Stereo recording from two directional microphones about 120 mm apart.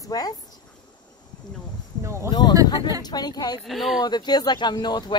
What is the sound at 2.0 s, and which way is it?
Speech, 25° right (ahead or behind).